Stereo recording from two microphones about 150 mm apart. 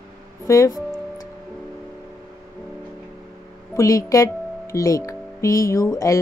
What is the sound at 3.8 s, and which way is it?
Speech, 20° left (ahead or behind).